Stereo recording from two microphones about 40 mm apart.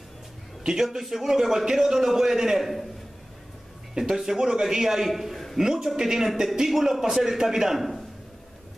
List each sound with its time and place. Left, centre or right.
0.8 s a man's voice: centre
4.0 s a man's voice: centre
5.6 s a man's voice: centre